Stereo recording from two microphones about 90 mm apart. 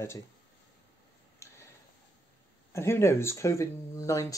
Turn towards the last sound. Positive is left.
turn(degrees=35)  # may be behind; listen again after turning